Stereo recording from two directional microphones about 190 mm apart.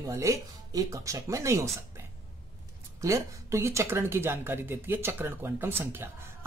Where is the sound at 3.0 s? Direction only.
15° right (ahead or behind).